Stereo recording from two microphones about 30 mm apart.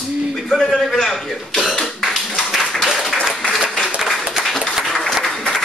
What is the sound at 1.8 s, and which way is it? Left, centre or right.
Cough, centre.